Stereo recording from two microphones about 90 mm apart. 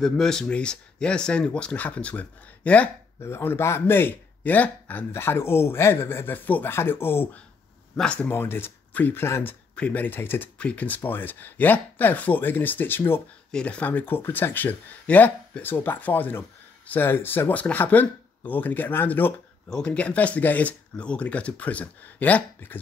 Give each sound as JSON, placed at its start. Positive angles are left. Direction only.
{"t": 0.0, "sound": "speech", "side_deg": 5}
{"t": 3.2, "sound": "speech", "side_deg": 30}
{"t": 7.9, "sound": "speech", "side_deg": 10}
{"t": 8.3, "sound": "speech", "side_deg": 25}
{"t": 13.5, "sound": "speech", "side_deg": 10}
{"t": 19.7, "sound": "speech", "side_deg": 10}